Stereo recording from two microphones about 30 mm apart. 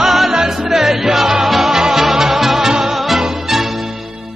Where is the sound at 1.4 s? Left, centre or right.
Centre.